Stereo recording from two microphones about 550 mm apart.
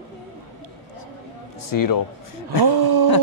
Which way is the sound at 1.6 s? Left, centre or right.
Left.